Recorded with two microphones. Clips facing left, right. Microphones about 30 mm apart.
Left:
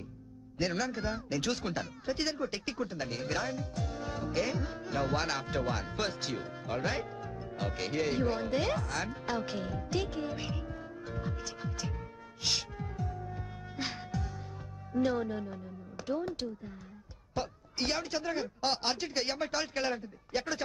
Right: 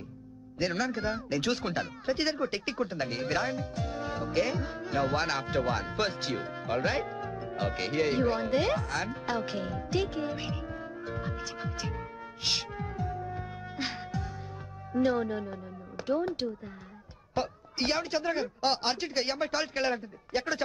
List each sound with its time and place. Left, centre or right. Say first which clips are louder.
0.6 s speech: right 3 dB; centre